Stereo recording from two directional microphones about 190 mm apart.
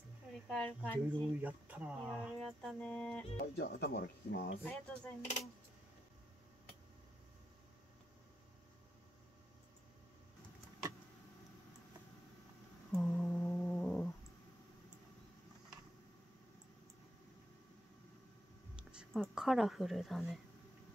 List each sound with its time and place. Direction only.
0.5 s speech: 5° left (ahead or behind)
1.4 s speech: 10° right (ahead or behind)
3.3 s speech: 55° left (ahead or behind)
4.6 s speech: 5° left (ahead or behind)
12.9 s humming: 5° left (ahead or behind)
18.8 s speech: 5° right (ahead or behind)